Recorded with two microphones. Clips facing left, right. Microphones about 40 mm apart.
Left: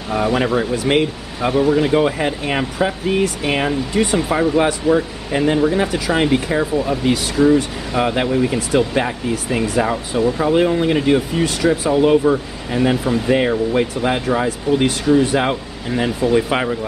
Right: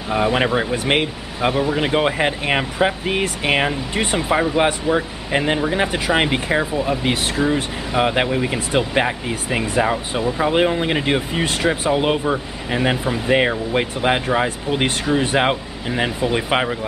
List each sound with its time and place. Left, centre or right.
0.1 s speech: right
1.5 s speech: centre
1.8 s speech: right
13.3 s speech: right